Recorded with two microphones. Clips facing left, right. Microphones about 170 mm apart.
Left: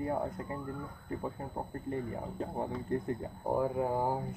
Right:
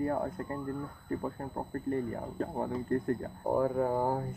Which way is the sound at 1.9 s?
15° left (ahead or behind).